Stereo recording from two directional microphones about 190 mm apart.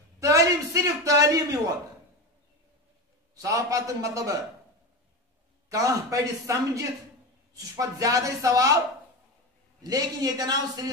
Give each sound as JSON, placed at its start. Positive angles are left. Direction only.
{"t": 0.2, "sound": "a man's voice", "side_deg": -15}
{"t": 3.3, "sound": "a man's voice", "side_deg": -15}
{"t": 5.7, "sound": "a man's voice", "side_deg": -15}
{"t": 9.8, "sound": "a man's voice", "side_deg": -20}